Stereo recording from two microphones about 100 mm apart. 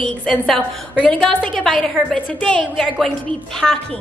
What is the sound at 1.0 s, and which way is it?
A woman's voice, 10° left (ahead or behind).